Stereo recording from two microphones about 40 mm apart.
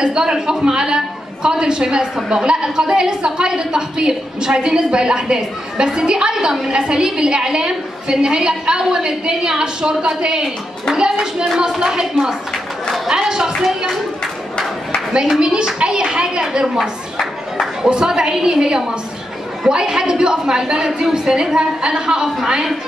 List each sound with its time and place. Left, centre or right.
0.0 s a woman's voice: centre
13.5 s a woman's voice: centre
15.3 s a woman's voice: centre
17.8 s a woman's voice: centre